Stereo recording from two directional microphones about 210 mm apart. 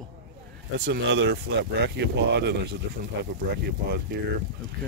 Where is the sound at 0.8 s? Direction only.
55° right (ahead or behind).